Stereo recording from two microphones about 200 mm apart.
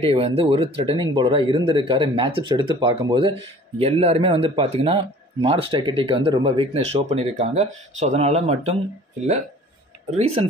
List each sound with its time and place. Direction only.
0.0 s speech: 30° right (ahead or behind)
10.1 s speech: 30° right (ahead or behind)